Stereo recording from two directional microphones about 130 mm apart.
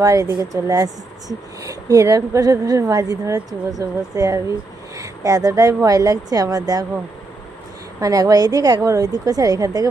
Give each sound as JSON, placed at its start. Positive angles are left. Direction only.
{"t": 0.0, "sound": "speech", "side_deg": -25}
{"t": 8.0, "sound": "speech", "side_deg": -30}